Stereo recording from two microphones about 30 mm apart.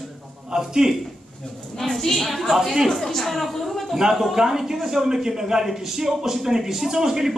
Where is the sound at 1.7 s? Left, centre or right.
Centre.